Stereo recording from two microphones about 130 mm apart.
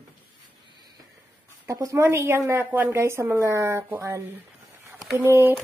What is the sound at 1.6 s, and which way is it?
A woman's voice, 25° right (ahead or behind).